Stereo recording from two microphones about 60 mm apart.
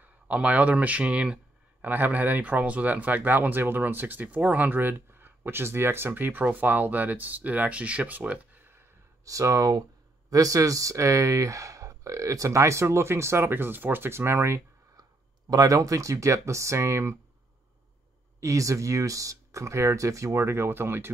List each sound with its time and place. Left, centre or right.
0.0 s speech: right
9.2 s speech: right
15.5 s speech: right
18.4 s speech: right